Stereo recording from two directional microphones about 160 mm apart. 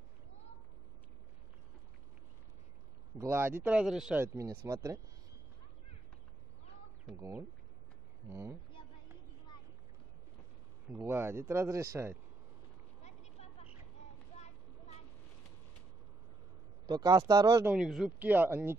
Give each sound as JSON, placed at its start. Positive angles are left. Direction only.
{"t": 3.2, "sound": "speech", "side_deg": -15}
{"t": 7.2, "sound": "speech", "side_deg": -15}
{"t": 10.9, "sound": "speech", "side_deg": -15}
{"t": 13.0, "sound": "a sound", "side_deg": 45}
{"t": 16.8, "sound": "speech", "side_deg": -25}
{"t": 17.6, "sound": "speech", "side_deg": -5}